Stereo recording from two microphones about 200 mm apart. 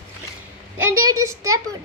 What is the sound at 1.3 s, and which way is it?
Speech, 15° right (ahead or behind).